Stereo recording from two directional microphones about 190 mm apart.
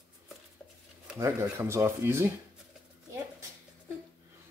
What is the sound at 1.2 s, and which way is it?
Speech, 15° right (ahead or behind).